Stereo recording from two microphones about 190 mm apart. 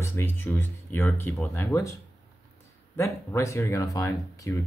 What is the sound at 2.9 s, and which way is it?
Speech, 15° left (ahead or behind).